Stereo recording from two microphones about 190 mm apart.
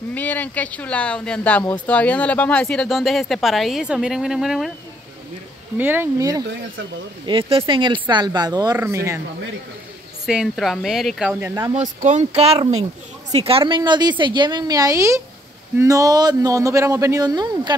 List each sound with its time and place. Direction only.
0.1 s speech: 10° left (ahead or behind)
5.8 s speech: 10° right (ahead or behind)
7.2 s speech: 25° right (ahead or behind)
10.2 s speech: centre (ahead or behind)
11.7 s speech: 40° right (ahead or behind); by 17.7 s 20° right (ahead or behind)